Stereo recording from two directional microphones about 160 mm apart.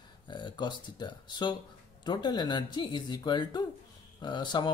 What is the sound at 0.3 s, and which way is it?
Speech, 30° left (ahead or behind).